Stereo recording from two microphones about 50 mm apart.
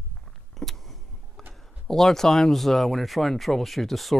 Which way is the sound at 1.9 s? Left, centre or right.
Centre.